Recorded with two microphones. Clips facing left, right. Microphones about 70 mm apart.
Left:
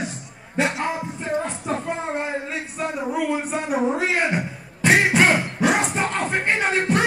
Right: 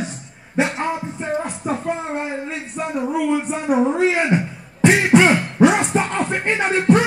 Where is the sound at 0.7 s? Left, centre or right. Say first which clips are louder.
Right 2 dB; right.